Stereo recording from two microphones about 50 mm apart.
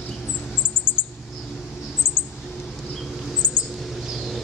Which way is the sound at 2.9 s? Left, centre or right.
Centre.